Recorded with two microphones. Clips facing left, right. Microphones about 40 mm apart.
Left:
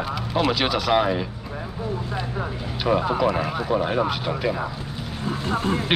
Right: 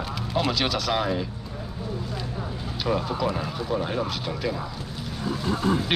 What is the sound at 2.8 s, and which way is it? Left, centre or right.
Speech, left.